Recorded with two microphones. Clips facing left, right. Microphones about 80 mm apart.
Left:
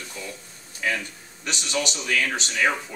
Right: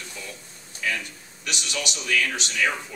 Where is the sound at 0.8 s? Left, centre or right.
Left.